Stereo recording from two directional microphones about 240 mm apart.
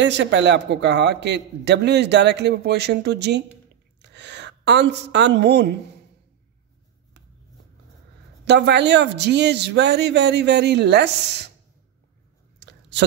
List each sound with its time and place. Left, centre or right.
0.0 s a man's voice: right
8.5 s a man's voice: right
12.5 s a sound: right